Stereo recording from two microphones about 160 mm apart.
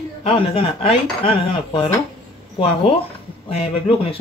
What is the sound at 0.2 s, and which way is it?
Speech, 40° left (ahead or behind).